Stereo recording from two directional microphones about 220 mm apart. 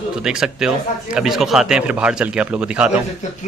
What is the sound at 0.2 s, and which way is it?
A man's voice, 5° right (ahead or behind).